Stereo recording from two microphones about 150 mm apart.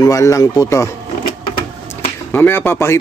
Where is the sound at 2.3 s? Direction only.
15° left (ahead or behind).